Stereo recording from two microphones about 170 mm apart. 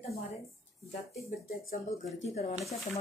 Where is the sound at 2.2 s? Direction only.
40° left (ahead or behind).